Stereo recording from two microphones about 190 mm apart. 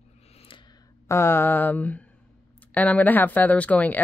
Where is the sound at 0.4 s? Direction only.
25° left (ahead or behind).